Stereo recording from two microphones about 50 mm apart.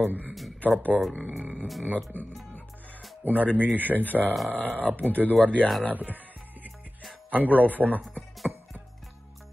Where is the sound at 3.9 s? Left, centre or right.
Left.